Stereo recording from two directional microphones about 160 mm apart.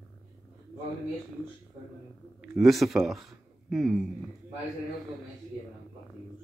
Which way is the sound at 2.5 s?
Centre (ahead or behind).